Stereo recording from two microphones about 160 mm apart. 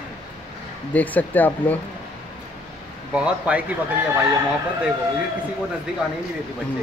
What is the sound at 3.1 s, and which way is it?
Speech, 5° right (ahead or behind).